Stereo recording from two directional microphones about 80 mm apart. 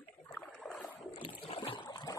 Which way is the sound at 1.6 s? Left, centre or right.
Left.